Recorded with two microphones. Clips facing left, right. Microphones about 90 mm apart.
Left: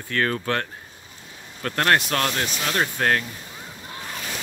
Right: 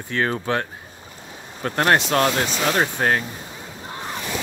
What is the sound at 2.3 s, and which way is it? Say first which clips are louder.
Speech: right 5 dB; 30° right (ahead or behind).